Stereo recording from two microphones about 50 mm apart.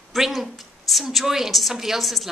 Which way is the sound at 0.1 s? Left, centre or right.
Centre.